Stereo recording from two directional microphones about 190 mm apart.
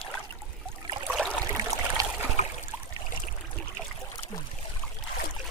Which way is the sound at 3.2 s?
10° left (ahead or behind).